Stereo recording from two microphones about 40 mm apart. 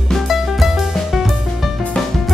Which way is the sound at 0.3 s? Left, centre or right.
Centre.